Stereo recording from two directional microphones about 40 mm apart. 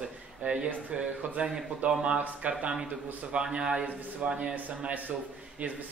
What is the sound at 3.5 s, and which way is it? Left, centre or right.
Speech, right.